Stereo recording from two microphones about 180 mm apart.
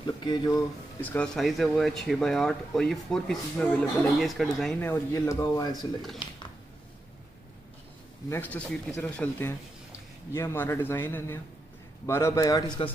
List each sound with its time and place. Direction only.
0.0 s speech: 25° left (ahead or behind)
1.0 s speech: 5° left (ahead or behind)
4.8 s a man's voice: 15° left (ahead or behind)
8.3 s a man's voice: 10° left (ahead or behind)